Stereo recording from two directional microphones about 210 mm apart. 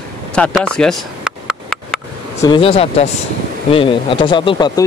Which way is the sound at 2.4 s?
25° left (ahead or behind).